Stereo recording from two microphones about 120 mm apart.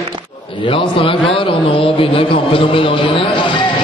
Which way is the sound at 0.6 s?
50° left (ahead or behind).